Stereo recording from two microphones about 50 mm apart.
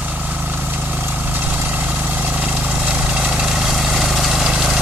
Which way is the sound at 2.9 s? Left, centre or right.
Centre.